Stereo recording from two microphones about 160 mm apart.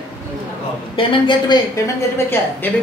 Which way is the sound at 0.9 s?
30° left (ahead or behind).